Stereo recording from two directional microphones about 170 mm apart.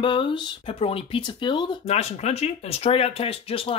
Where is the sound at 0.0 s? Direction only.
30° left (ahead or behind).